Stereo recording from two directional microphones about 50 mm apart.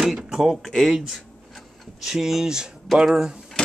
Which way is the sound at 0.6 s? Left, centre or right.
Centre.